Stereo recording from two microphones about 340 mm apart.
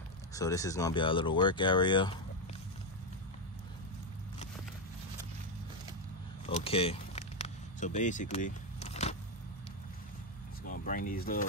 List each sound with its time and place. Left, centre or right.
0.3 s speech: centre
6.4 s a sound: centre
10.6 s speech: left